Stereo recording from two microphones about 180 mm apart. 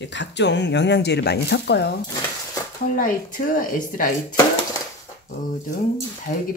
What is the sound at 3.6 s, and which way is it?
Speech, 50° left (ahead or behind).